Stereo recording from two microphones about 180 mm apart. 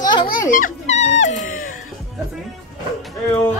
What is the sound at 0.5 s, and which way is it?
Dog, 45° left (ahead or behind).